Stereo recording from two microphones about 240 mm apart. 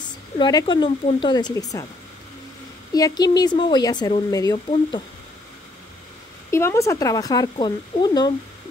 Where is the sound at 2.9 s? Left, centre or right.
Centre.